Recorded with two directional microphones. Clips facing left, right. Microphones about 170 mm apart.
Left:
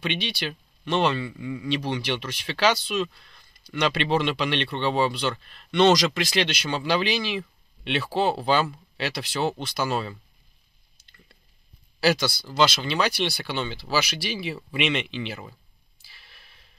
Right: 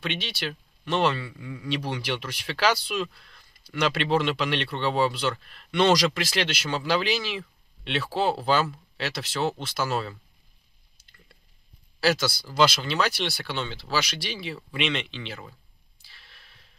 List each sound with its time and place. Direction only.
0.0 s speech: centre (ahead or behind)
12.0 s speech: centre (ahead or behind)
16.0 s a sound: 5° left (ahead or behind)